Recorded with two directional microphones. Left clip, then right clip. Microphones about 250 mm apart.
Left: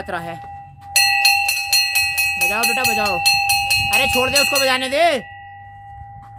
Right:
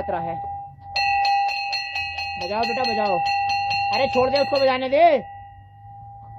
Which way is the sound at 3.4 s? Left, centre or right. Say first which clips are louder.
Left 4 dB; centre.